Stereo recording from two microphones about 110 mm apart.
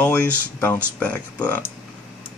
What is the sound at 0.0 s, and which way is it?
Speech, 15° left (ahead or behind).